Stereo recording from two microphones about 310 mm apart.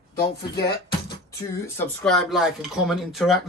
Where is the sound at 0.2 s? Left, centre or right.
Left.